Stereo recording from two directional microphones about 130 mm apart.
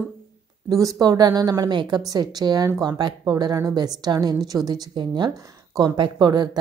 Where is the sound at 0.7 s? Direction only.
25° right (ahead or behind).